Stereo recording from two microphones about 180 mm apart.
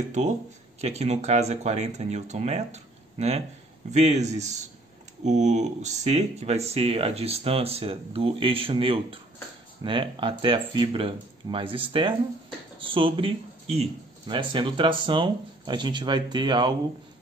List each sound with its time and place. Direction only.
0.2 s speech: 40° right (ahead or behind); by 16.7 s 25° right (ahead or behind)